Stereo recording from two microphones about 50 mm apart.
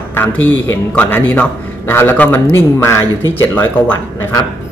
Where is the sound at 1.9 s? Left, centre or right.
Left.